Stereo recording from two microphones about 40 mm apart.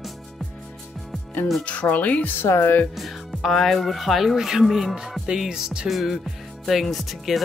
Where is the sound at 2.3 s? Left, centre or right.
Left.